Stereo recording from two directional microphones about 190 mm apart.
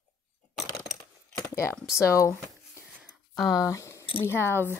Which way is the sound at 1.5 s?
15° left (ahead or behind).